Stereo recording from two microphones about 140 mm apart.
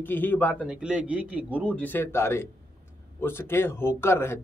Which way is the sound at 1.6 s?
10° left (ahead or behind).